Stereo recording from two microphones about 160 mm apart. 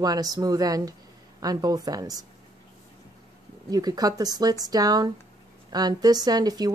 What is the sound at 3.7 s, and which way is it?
Speech, 25° right (ahead or behind).